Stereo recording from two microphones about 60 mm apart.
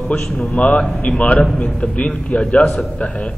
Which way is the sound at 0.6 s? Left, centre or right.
Left.